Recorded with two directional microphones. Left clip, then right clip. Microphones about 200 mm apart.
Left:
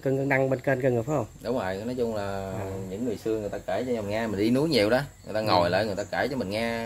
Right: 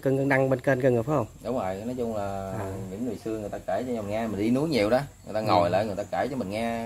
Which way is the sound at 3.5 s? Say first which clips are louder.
Left 1 dB; 5° left (ahead or behind).